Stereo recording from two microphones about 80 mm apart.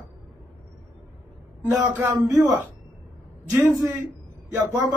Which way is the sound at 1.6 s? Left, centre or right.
Centre.